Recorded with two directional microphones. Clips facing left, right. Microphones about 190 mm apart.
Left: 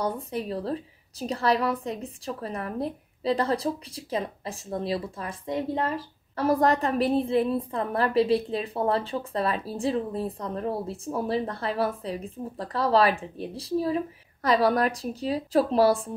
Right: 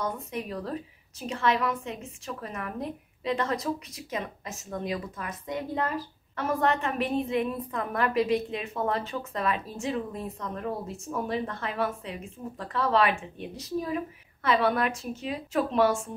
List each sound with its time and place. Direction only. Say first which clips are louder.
0.0 s a woman's voice: left 3 dB; 30° left (ahead or behind)